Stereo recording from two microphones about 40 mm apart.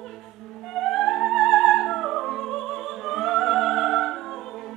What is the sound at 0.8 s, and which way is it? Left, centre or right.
Music, centre.